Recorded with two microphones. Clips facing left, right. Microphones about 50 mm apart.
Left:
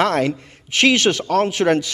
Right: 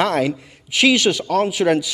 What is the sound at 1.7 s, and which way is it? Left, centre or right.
Speech, centre.